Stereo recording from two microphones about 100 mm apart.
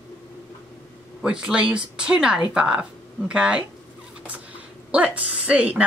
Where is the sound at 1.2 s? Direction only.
10° right (ahead or behind).